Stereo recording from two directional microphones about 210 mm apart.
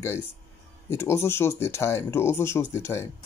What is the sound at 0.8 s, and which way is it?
Speech, 10° left (ahead or behind).